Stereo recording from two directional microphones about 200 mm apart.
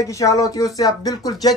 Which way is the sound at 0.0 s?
15° left (ahead or behind).